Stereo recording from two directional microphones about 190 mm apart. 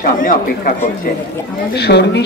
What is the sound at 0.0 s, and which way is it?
Speech, 45° left (ahead or behind).